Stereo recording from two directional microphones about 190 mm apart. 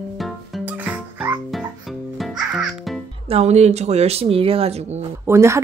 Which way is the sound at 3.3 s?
35° right (ahead or behind).